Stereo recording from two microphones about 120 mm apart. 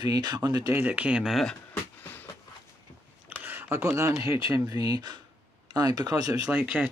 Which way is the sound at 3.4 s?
20° right (ahead or behind).